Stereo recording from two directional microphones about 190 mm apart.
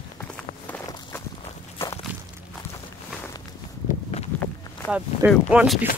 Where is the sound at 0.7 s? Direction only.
10° left (ahead or behind).